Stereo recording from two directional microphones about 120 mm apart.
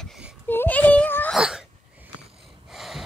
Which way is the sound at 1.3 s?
5° right (ahead or behind).